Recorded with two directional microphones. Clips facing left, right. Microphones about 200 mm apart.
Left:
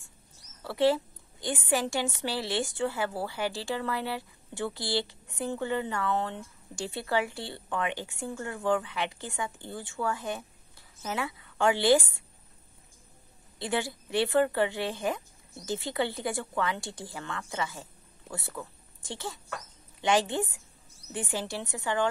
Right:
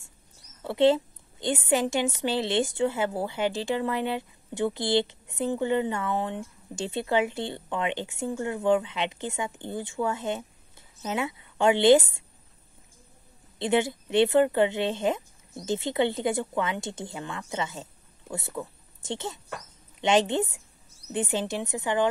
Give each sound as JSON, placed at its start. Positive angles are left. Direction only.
{"t": 0.7, "sound": "a woman's voice", "side_deg": -20}
{"t": 13.6, "sound": "a woman's voice", "side_deg": -20}